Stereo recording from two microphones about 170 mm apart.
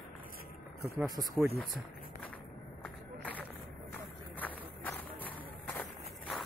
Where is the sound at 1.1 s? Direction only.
20° right (ahead or behind).